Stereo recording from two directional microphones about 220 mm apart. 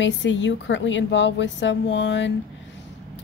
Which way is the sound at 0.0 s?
55° left (ahead or behind).